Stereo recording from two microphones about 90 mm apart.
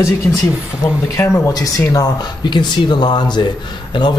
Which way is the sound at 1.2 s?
30° left (ahead or behind).